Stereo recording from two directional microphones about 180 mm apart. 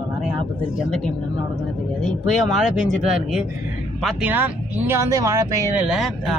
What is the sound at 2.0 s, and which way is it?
Speech, centre (ahead or behind).